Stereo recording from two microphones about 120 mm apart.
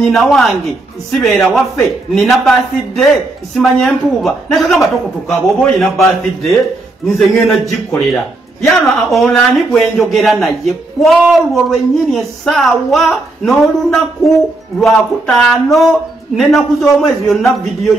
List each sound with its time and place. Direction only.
0.0 s a man's voice: centre (ahead or behind)
3.5 s a man's voice: centre (ahead or behind)